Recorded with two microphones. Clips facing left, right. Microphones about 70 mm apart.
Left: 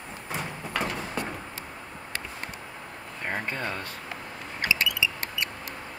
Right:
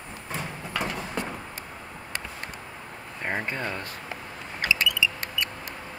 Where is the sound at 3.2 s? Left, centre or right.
Centre.